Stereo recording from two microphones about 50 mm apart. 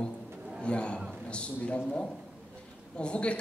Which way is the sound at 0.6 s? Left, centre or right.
Centre.